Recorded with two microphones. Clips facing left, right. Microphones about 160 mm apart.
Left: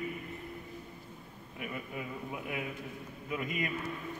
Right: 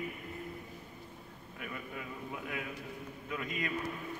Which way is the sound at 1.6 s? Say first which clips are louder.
Left 3 dB; 10° left (ahead or behind).